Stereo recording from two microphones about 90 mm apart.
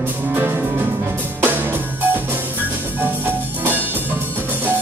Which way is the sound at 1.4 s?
25° right (ahead or behind).